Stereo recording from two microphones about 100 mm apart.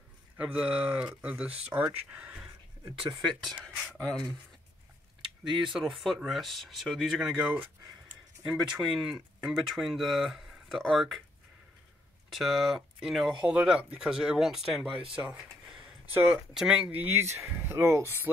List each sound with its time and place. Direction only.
0.4 s speech: 10° right (ahead or behind); by 4.4 s 5° left (ahead or behind)
5.5 s speech: centre (ahead or behind)
8.5 s speech: centre (ahead or behind)
12.3 s speech: centre (ahead or behind)
16.1 s speech: 20° right (ahead or behind)
16.5 s speech: 5° right (ahead or behind)
17.0 s speech: 25° right (ahead or behind)